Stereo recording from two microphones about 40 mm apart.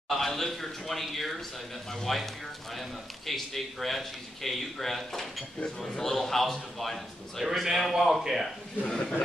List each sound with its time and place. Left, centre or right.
0.1 s a man's voice: centre
8.8 s a man's voice: left